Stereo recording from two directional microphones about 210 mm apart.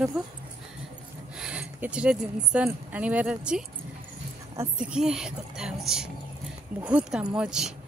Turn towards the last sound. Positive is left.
turn(degrees=-5)  # may be behind; listen again after turning